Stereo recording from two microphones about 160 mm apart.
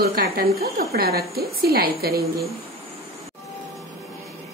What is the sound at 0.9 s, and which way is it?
A woman's voice, 80° right.